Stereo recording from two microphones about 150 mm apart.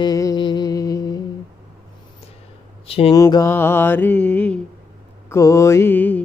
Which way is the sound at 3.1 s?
25° left (ahead or behind).